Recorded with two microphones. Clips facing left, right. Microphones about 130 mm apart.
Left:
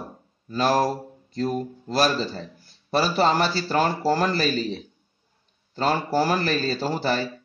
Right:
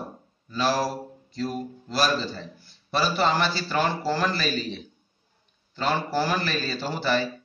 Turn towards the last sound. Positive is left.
turn(degrees=40)  # may be behind; listen again after turning